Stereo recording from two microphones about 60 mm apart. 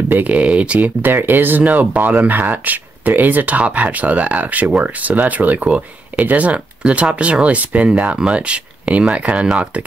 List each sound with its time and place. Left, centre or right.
0.1 s speech: right